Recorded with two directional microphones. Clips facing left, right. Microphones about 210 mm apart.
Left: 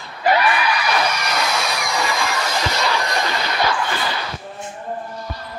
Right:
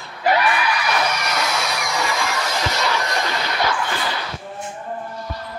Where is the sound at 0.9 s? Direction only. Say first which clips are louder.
Left 1 dB; 30° left (ahead or behind).